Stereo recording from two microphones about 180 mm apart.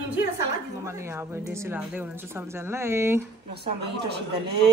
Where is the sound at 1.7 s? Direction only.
10° right (ahead or behind).